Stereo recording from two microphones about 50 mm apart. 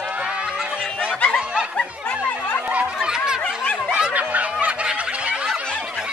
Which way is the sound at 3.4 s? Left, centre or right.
Left.